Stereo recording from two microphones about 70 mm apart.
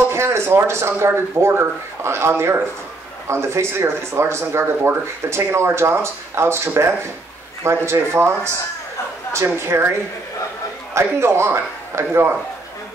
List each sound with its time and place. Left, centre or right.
0.1 s speech: right
11.0 s speech: right